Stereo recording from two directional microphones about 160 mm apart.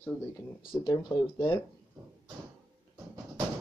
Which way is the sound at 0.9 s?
30° left (ahead or behind).